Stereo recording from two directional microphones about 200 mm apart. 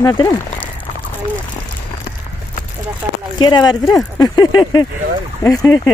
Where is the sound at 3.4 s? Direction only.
20° left (ahead or behind).